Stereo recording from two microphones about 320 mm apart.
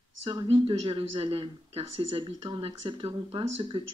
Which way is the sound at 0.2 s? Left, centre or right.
Centre.